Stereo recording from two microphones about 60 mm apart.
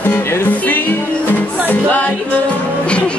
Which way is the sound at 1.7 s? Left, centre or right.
Left.